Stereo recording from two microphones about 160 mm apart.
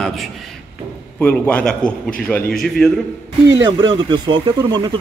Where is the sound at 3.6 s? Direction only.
30° right (ahead or behind).